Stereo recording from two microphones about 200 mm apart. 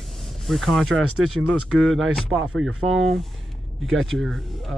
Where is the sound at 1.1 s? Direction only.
90° right.